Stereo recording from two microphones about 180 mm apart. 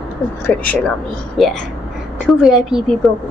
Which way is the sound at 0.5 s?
10° left (ahead or behind).